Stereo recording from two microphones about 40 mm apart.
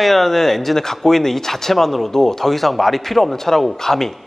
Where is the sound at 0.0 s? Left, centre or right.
Centre.